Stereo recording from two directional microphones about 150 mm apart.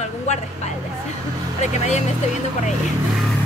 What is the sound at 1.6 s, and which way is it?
Speech, 50° left (ahead or behind).